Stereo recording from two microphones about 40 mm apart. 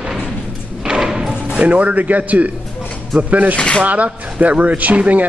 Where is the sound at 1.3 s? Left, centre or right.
Right.